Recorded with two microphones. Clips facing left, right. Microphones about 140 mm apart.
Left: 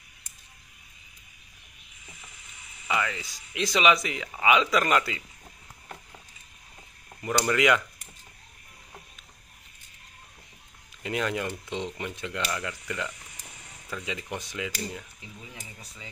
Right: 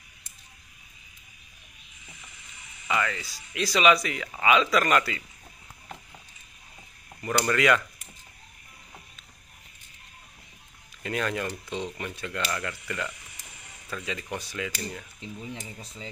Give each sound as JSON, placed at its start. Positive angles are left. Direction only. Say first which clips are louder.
{"t": 2.9, "sound": "speech", "louder": "right 1 dB", "side_deg": 15}
{"t": 7.2, "sound": "speech", "louder": "even", "side_deg": 15}
{"t": 11.0, "sound": "speech", "louder": "even", "side_deg": 20}
{"t": 15.1, "sound": "speech", "louder": "right 7 dB", "side_deg": -25}